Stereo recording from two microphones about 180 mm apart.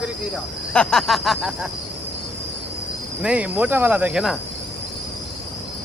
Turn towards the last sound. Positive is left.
turn(degrees=-5)  # may be behind; listen again after turning